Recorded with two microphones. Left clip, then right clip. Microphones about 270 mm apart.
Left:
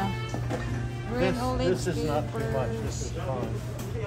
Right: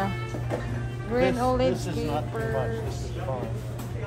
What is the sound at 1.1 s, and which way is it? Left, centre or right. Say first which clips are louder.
Speech: right 5 dB; centre.